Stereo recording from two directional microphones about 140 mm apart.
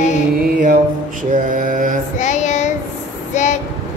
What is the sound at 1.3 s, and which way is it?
Mantra, 75° right (ahead or behind).